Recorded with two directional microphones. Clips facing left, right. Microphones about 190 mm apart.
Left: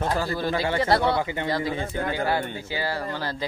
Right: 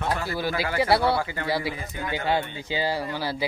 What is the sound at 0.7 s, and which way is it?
Speech, 5° right (ahead or behind).